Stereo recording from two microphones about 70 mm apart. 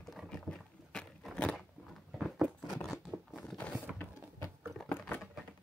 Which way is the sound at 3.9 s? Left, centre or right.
Centre.